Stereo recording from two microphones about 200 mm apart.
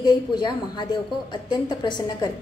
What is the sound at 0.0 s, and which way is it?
Speech, 20° left (ahead or behind).